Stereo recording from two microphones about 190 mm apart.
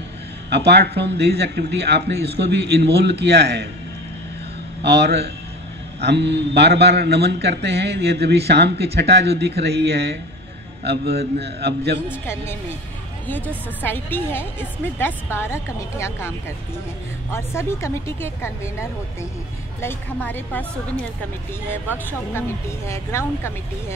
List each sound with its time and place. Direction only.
0.5 s a man's voice: 60° right (ahead or behind)
4.8 s a man's voice: 65° right (ahead or behind)
13.8 s speech: 10° left (ahead or behind)
22.8 s speech: 15° left (ahead or behind)